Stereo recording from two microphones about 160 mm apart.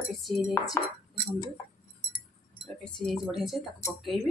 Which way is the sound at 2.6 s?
Centre (ahead or behind).